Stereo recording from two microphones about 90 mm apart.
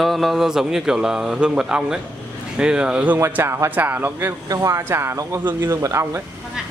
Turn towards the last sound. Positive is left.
turn(degrees=-35)  # may be behind; listen again after turning